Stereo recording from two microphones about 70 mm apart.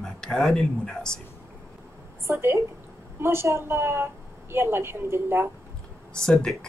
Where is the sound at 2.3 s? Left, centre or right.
Right.